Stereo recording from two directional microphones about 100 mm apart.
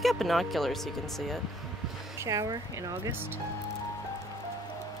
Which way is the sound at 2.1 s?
35° right (ahead or behind).